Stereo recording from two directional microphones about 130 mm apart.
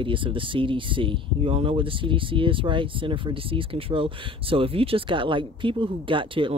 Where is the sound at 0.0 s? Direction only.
40° right (ahead or behind).